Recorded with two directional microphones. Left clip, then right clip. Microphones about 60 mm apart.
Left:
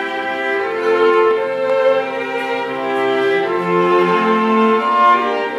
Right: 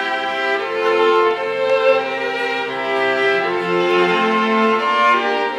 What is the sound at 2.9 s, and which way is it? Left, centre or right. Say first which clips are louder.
Music: left 1 dB; centre.